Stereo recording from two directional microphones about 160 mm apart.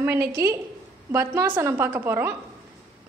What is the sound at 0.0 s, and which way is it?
A woman's voice, 15° right (ahead or behind).